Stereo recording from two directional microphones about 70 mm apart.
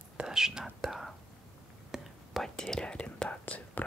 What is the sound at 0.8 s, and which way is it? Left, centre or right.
Speech, centre.